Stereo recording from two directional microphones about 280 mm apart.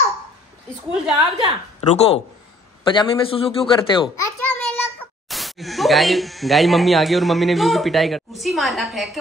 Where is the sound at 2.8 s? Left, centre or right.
Centre.